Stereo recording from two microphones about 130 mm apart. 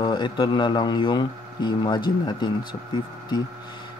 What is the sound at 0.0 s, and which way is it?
Speech, 35° left (ahead or behind).